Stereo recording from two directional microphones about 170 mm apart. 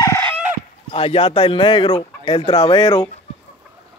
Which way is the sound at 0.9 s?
35° left (ahead or behind).